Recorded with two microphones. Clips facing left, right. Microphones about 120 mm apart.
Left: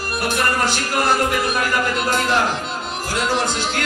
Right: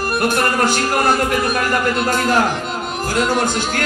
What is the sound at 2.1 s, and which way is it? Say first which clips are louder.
Music: right 2 dB; 45° right (ahead or behind).